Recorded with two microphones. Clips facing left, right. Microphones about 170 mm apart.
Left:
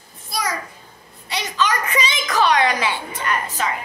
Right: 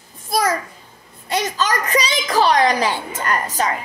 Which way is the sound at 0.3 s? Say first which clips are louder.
Right 7 dB; 50° right (ahead or behind).